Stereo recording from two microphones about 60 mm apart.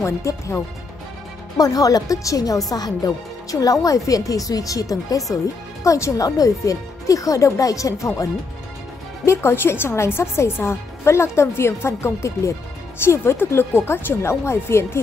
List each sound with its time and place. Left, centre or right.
0.0 s speech: left
1.6 s speech: left
5.9 s speech: left
6.2 s speech: left
9.2 s speech: left